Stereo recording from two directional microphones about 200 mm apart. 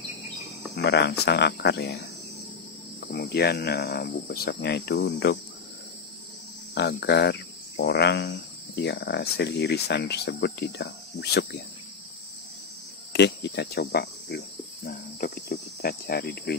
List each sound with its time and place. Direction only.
0.7 s speech: 60° left (ahead or behind)
6.7 s speech: 55° left (ahead or behind)
13.1 s speech: 60° left (ahead or behind)